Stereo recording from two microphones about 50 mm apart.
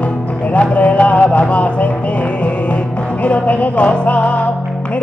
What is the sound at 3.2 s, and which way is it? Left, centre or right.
Music, left.